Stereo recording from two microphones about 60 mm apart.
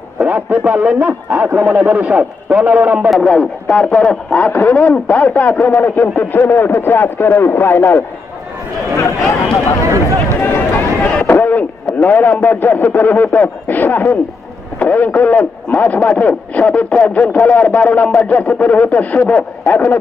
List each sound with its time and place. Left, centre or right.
0.2 s a man's voice: right
2.0 s a man's voice: right
3.2 s speech: centre; by 8.0 s left
8.9 s a sound: left
11.0 s a sound: centre
11.2 s speech: left